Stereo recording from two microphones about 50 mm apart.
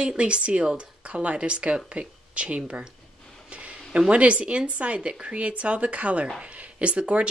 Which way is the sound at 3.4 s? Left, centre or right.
Right.